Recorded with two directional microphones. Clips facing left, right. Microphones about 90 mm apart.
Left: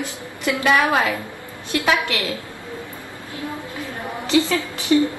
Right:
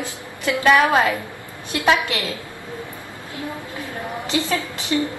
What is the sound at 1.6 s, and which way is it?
Speech, 20° right (ahead or behind).